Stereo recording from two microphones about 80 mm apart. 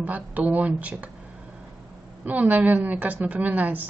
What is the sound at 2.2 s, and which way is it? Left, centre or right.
Speech, right.